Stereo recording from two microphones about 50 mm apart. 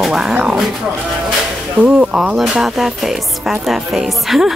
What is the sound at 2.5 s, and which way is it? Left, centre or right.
Music, centre.